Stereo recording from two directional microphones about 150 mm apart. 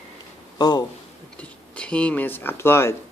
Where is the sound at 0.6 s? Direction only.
25° left (ahead or behind).